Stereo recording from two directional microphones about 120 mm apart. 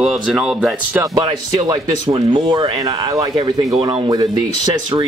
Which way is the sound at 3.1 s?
30° right (ahead or behind).